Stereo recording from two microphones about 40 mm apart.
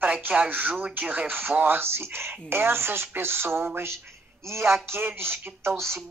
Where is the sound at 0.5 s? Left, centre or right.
Right.